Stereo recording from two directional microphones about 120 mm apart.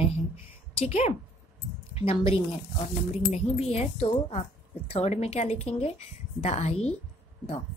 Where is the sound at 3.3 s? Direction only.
60° left (ahead or behind).